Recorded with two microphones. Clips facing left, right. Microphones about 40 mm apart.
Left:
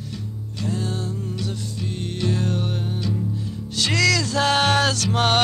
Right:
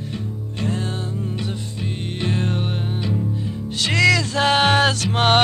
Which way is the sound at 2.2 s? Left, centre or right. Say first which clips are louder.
Right 1 dB; right.